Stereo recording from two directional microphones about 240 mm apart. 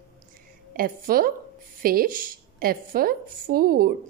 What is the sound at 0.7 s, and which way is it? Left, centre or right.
A woman's voice, right.